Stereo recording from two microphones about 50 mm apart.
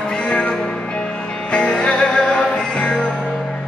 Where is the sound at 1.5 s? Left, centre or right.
Centre.